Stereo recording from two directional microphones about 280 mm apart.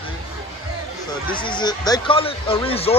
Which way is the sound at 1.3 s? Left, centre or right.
Centre.